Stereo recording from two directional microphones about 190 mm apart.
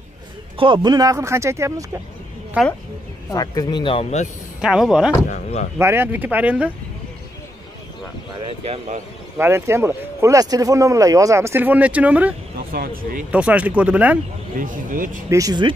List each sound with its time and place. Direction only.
0.6 s speech: 25° right (ahead or behind); by 2.7 s 5° right (ahead or behind)
3.3 s speech: 20° left (ahead or behind)
4.6 s speech: 5° right (ahead or behind)
5.3 s speech: 40° left (ahead or behind)
5.8 s speech: 10° right (ahead or behind)
8.4 s speech: 30° right (ahead or behind)
9.4 s speech: 15° right (ahead or behind)
12.7 s speech: 50° right (ahead or behind)
13.3 s speech: 5° right (ahead or behind)
14.6 s speech: 45° right (ahead or behind)
15.2 s speech: 20° right (ahead or behind)